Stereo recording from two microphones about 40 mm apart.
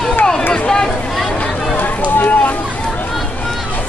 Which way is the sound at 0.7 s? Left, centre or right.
Centre.